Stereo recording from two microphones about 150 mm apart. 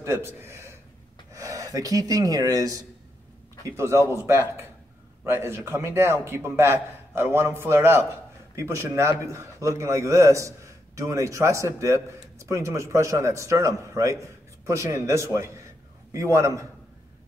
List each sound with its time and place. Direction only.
0.0 s a man's voice: 15° right (ahead or behind)